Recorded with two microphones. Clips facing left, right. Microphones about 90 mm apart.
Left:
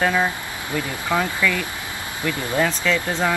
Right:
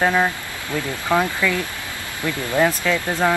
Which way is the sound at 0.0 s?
15° right (ahead or behind).